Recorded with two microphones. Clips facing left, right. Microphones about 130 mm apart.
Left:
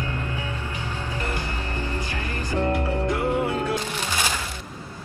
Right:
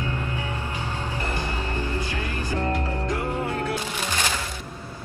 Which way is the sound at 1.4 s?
15° right (ahead or behind).